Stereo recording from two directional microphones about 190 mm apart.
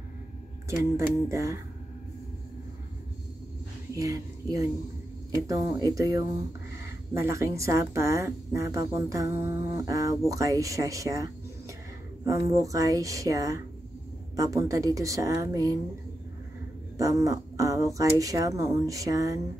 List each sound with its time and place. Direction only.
0.7 s a woman's voice: 15° right (ahead or behind)
3.9 s a woman's voice: 15° right (ahead or behind)
16.9 s a woman's voice: 20° right (ahead or behind)